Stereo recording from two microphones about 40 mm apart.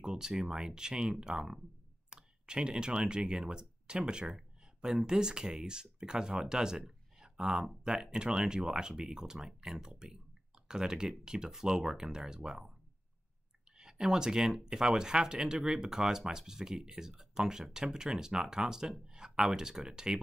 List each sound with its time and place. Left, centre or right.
0.0 s speech: centre
13.7 s speech: centre